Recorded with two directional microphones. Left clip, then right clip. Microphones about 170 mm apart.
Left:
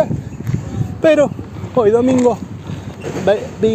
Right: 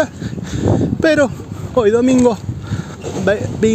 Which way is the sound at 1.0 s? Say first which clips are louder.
Left 2 dB; 90° right.